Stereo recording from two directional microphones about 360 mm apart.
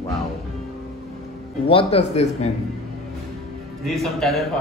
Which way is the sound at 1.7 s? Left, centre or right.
Centre.